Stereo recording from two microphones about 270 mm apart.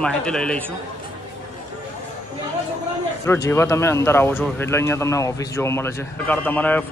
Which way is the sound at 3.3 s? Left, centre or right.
Centre.